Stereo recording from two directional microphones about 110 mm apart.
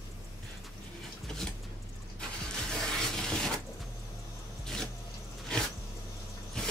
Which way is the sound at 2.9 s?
5° left (ahead or behind).